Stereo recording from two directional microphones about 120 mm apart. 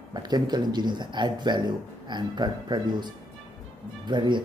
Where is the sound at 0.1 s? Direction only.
35° right (ahead or behind).